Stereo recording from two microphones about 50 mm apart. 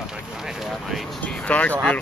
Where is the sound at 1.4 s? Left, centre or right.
Left.